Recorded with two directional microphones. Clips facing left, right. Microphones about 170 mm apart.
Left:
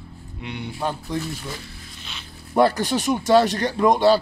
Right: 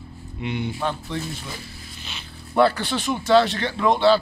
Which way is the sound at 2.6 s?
40° left (ahead or behind).